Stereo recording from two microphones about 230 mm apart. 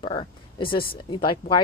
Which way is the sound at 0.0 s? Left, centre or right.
Left.